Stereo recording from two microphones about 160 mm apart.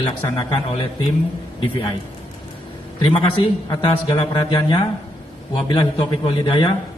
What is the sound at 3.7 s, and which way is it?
A man's voice, 30° left (ahead or behind).